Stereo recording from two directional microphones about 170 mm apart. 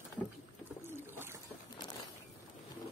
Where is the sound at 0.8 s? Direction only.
15° right (ahead or behind).